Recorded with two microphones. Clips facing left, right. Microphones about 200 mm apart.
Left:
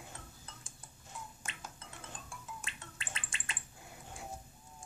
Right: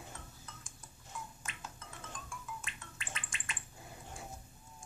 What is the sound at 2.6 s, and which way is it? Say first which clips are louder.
Gargling: even; 30° left (ahead or behind).